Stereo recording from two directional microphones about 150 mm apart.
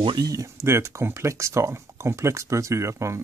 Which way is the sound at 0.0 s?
30° right (ahead or behind).